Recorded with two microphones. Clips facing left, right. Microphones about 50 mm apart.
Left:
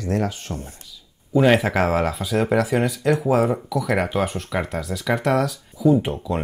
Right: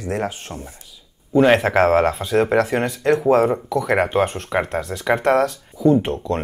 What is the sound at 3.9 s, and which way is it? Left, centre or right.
Speech, right.